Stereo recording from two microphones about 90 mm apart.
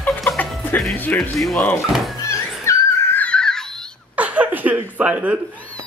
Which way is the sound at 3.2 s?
10° left (ahead or behind).